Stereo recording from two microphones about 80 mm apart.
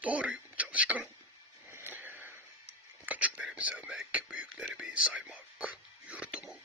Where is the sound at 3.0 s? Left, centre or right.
Centre.